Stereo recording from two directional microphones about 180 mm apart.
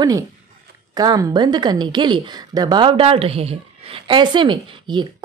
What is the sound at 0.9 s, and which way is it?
Speech, 20° right (ahead or behind).